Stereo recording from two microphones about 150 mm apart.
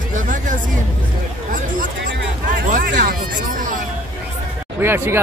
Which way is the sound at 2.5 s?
65° right (ahead or behind).